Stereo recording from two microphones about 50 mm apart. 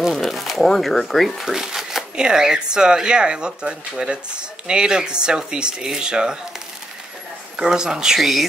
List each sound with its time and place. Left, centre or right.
0.1 s speech: centre
1.5 s speech: centre
7.5 s speech: centre
8.2 s speech: centre